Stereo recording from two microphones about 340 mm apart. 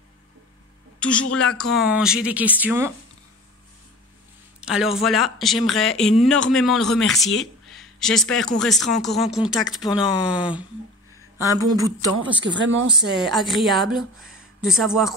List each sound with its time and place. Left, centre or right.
0.9 s a woman's voice: centre
4.6 s speech: centre
12.4 s speech: right
13.2 s speech: centre